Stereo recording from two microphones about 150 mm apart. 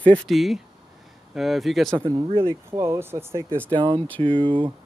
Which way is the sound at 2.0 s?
25° right (ahead or behind).